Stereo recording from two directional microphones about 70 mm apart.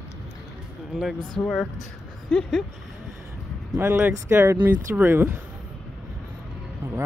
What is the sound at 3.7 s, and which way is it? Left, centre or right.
Speech, right.